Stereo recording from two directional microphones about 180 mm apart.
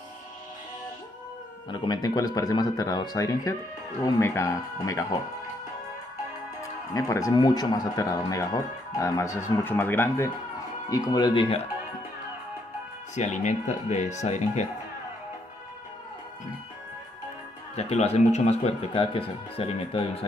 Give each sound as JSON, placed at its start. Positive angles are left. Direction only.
{"t": 1.7, "sound": "speech", "side_deg": 25}
{"t": 6.9, "sound": "speech", "side_deg": 20}
{"t": 13.1, "sound": "speech", "side_deg": 40}
{"t": 17.7, "sound": "speech", "side_deg": 35}